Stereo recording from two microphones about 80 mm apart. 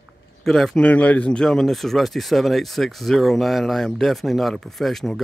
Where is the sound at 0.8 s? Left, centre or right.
Centre.